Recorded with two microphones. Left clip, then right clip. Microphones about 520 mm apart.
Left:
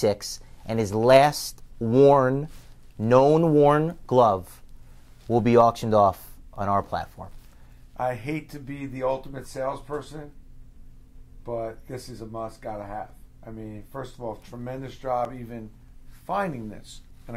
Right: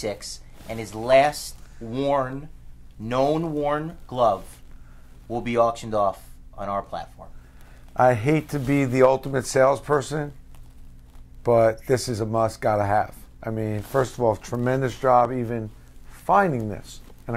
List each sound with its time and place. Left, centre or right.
0.0 s speech: left
7.9 s speech: right
11.4 s speech: right